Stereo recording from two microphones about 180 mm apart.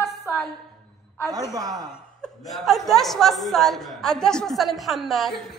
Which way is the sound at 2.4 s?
Centre (ahead or behind).